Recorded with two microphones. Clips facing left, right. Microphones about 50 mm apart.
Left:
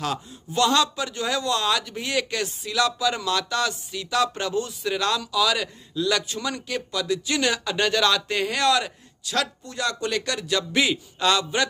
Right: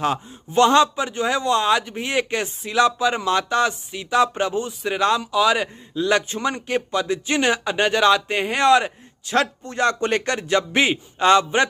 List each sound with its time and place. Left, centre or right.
0.0 s a man's voice: right